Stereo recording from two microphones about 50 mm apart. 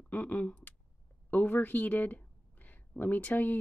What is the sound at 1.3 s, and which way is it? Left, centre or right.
Speech, left.